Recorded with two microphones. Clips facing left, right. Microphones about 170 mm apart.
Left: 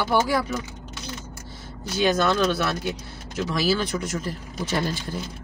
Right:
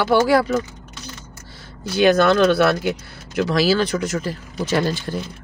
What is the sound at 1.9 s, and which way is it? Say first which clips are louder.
Speech: right 7 dB; 65° right (ahead or behind).